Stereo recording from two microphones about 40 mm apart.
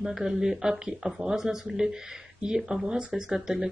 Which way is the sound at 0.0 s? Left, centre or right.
Centre.